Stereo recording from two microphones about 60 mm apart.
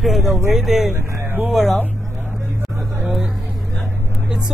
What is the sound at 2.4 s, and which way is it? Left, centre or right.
Vehicle, right.